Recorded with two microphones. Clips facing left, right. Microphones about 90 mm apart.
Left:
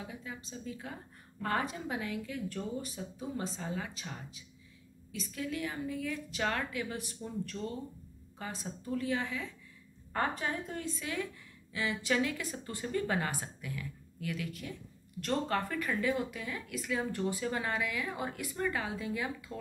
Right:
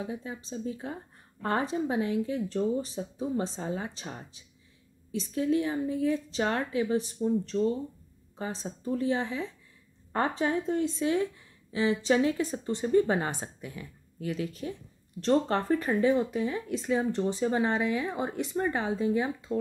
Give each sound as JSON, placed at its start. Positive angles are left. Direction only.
{"t": 0.0, "sound": "a woman's voice", "side_deg": -30}